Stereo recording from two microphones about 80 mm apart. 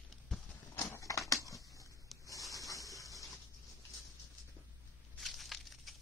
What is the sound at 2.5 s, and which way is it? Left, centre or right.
Rub, left.